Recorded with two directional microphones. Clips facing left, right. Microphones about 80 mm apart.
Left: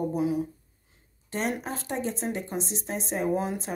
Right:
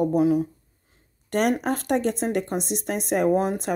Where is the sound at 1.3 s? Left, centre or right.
Right.